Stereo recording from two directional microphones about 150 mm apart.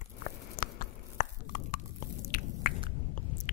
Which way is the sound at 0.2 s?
65° left (ahead or behind).